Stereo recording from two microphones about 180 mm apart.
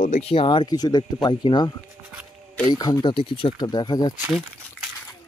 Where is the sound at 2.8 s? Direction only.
25° left (ahead or behind).